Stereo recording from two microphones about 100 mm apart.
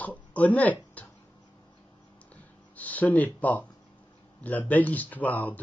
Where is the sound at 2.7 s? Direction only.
15° left (ahead or behind).